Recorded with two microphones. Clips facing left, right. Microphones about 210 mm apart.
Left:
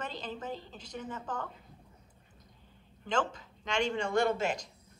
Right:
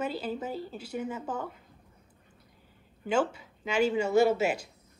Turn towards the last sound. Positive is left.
turn(degrees=-10)  # may be behind; listen again after turning